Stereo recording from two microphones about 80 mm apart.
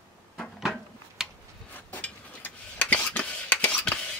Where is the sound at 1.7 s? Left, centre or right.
Left.